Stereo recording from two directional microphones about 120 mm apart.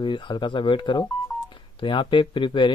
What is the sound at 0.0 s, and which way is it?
Speech, 40° left (ahead or behind).